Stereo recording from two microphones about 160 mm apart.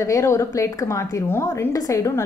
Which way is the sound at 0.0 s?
20° left (ahead or behind).